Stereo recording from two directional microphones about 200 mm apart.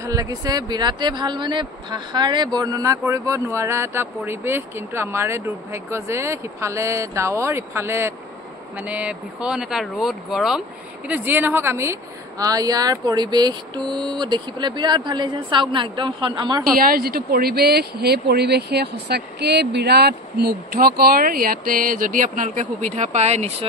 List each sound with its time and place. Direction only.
0.0 s a woman's voice: 15° right (ahead or behind)
16.7 s speech: 45° right (ahead or behind)